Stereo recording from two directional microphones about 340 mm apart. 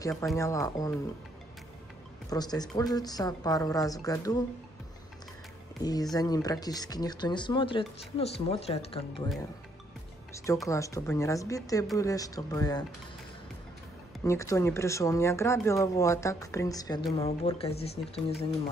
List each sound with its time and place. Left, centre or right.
0.0 s speech: centre
2.2 s speech: centre
5.8 s speech: centre
10.3 s speech: centre
14.2 s speech: centre